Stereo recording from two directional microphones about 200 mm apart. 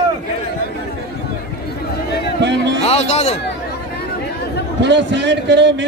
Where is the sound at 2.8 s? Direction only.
30° left (ahead or behind).